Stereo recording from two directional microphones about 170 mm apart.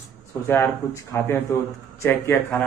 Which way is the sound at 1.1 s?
15° left (ahead or behind).